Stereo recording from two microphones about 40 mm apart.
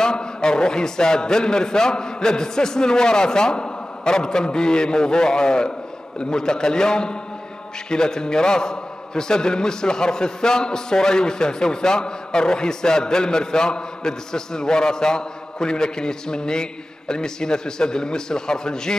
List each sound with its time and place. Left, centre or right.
0.0 s a man's voice: centre